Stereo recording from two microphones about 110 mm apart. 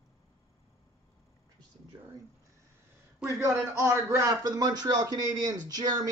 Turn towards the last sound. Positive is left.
turn(degrees=-35)  # may be behind; listen again after turning